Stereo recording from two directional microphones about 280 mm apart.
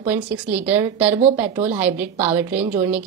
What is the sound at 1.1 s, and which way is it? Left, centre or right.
Speech, right.